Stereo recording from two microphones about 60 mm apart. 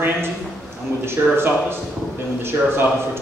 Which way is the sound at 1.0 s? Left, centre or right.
Right.